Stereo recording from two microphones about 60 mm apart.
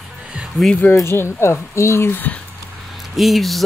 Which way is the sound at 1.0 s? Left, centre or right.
Left.